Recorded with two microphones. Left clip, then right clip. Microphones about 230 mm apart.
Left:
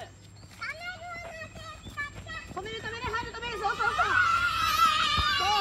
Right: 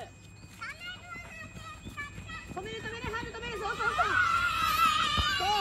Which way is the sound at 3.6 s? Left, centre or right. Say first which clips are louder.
Left 3 dB; right.